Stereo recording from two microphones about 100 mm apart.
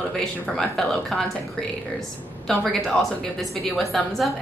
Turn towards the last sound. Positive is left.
turn(degrees=0)  # may be behind; listen again after turning